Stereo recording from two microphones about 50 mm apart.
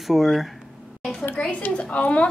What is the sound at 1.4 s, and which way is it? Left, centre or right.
Speech, left.